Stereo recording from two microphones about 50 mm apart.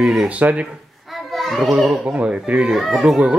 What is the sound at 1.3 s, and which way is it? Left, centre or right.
Children playing, centre.